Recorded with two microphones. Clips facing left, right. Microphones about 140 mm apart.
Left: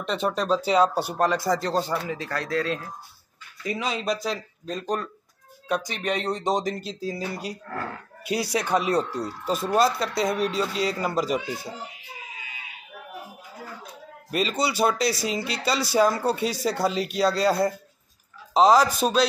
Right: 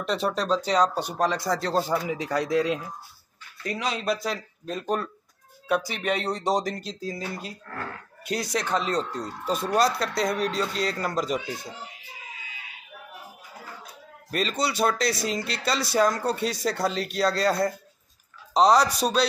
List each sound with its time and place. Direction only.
0.0 s speech: centre (ahead or behind)
2.0 s speech: 15° right (ahead or behind)
3.6 s speech: centre (ahead or behind)
14.3 s speech: 5° left (ahead or behind)